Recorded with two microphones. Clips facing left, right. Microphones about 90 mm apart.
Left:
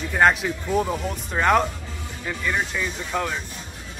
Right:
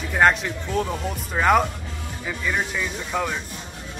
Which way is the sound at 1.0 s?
Centre (ahead or behind).